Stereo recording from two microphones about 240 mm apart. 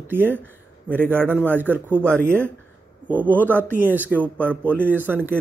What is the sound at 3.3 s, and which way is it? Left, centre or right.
Speech, centre.